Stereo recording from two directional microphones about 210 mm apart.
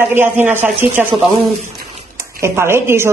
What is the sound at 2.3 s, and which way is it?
Speech, 10° right (ahead or behind).